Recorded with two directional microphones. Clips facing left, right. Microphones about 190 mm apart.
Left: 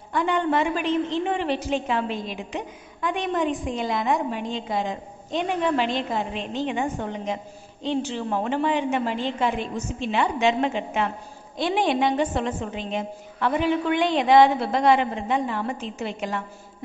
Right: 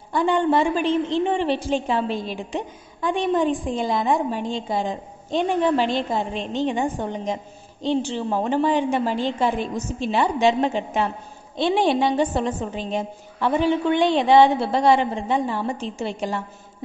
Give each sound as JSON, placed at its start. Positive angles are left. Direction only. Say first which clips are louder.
{"t": 0.1, "sound": "a woman's voice", "louder": "right 3 dB", "side_deg": -30}